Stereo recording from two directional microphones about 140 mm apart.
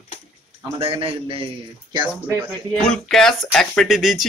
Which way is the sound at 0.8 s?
40° right (ahead or behind).